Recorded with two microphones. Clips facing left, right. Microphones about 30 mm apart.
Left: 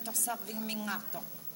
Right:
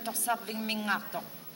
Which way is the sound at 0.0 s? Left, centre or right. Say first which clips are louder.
Right 6 dB; right.